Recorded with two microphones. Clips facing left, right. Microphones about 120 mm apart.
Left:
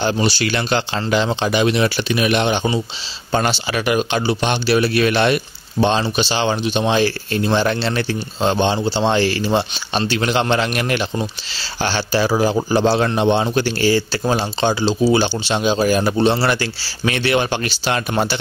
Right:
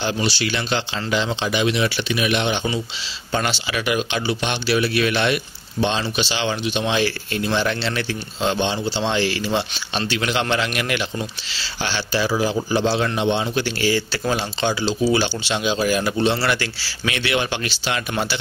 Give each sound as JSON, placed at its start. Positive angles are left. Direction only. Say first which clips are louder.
{"t": 0.0, "sound": "speech", "louder": "left 4 dB", "side_deg": 45}